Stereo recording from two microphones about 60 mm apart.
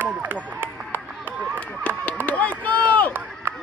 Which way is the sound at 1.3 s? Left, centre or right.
Right.